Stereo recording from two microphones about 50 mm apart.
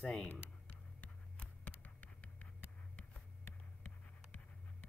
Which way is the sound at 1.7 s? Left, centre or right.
Left.